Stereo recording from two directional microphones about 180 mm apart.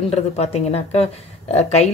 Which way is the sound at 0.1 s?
35° left (ahead or behind).